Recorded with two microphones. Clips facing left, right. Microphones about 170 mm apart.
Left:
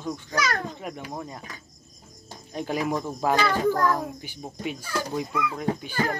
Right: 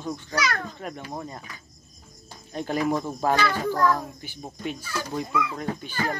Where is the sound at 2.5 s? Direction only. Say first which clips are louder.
Right 2 dB; 5° left (ahead or behind).